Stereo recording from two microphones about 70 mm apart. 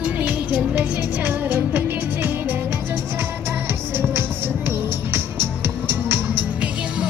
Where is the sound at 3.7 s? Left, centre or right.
Right.